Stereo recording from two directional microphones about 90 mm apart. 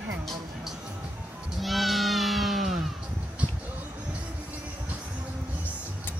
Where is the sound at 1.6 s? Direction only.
Centre (ahead or behind).